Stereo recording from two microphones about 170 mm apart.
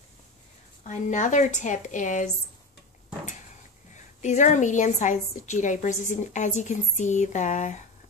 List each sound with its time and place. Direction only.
0.8 s a woman's voice: 45° left (ahead or behind)
3.9 s a woman's voice: 45° left (ahead or behind)